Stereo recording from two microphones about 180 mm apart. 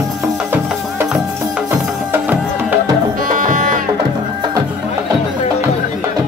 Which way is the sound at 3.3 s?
50° right (ahead or behind).